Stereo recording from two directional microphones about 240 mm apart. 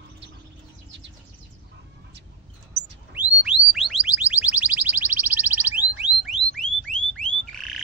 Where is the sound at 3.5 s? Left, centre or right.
Centre.